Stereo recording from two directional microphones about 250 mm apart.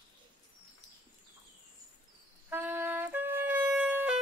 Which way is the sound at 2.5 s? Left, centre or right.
Centre.